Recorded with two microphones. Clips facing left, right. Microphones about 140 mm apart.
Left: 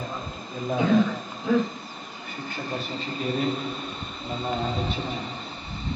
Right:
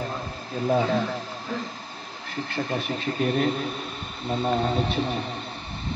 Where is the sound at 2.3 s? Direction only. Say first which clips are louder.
Right 4 dB; 80° right.